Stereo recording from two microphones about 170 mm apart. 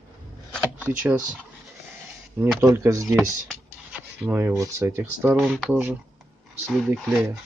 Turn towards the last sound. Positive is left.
turn(degrees=0)  # may be behind; listen again after turning